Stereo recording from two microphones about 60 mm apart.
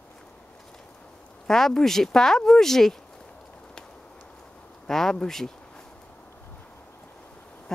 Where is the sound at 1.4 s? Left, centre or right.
Centre.